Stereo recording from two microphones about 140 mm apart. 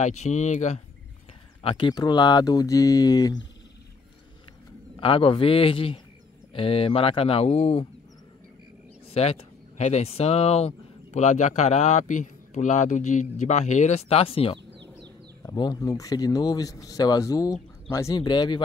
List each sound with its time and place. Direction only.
0.0 s a man's voice: 55° left (ahead or behind)
1.6 s speech: 35° left (ahead or behind)
4.9 s speech: 40° left (ahead or behind)
9.1 s a man's voice: 45° left (ahead or behind)
15.4 s speech: 30° left (ahead or behind)